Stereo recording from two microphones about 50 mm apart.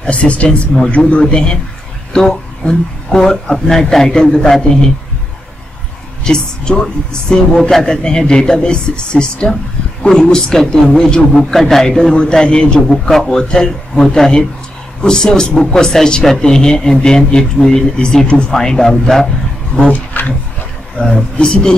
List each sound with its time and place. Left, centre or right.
0.0 s speech: left
6.2 s speech: centre
13.1 s speech: centre
19.9 s speech: left
21.0 s speech: centre